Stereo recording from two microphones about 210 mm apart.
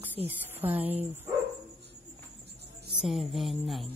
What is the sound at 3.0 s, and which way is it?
Speech, centre (ahead or behind).